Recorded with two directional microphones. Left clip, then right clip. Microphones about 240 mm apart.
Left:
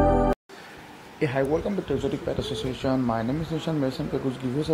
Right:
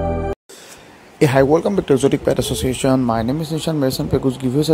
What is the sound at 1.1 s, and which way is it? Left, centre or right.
Speech, right.